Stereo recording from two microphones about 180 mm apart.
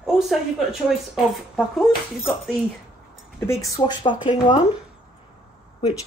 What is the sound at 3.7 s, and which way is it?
Speech, 25° left (ahead or behind).